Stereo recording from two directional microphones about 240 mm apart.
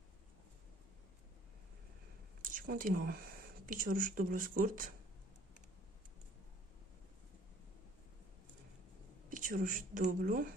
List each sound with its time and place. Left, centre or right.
2.6 s speech: right
9.3 s speech: right